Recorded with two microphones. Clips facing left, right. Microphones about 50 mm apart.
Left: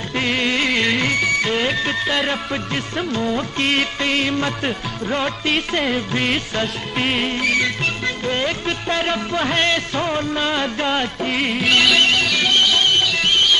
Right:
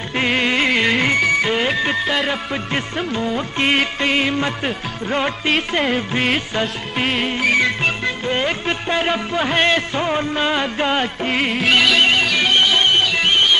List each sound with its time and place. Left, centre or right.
0.1 s music: centre
5.5 s music: centre